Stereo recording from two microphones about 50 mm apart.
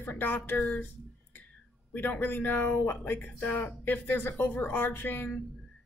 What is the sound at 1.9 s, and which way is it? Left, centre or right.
A woman's voice, left.